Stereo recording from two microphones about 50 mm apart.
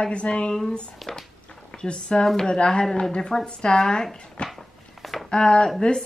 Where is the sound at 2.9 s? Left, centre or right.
Centre.